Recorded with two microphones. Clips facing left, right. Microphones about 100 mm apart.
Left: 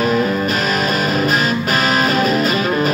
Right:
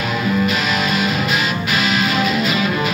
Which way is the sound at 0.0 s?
40° left (ahead or behind).